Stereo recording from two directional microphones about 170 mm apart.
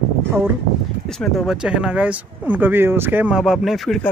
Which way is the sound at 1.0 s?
Centre (ahead or behind).